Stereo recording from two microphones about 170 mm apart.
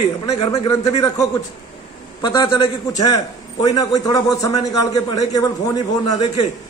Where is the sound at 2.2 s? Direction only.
25° left (ahead or behind).